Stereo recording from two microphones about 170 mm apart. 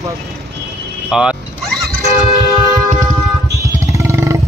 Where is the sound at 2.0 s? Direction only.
20° right (ahead or behind).